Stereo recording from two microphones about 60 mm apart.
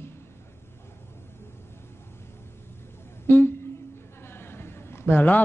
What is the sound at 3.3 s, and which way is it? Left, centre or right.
Speech, left.